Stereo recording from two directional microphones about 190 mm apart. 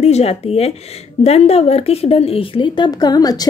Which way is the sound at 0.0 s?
35° left (ahead or behind).